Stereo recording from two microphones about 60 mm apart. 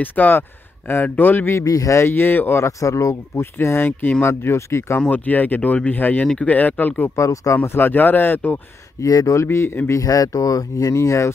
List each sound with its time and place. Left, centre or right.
0.0 s speech: left
1.5 s speech: left
2.0 s speech: left
2.6 s speech: left
3.5 s speech: left
5.0 s speech: left
7.2 s speech: left
7.6 s speech: left
9.0 s speech: left
9.8 s speech: left